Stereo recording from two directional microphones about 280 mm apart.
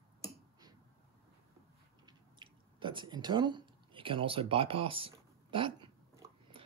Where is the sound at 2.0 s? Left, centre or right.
Centre.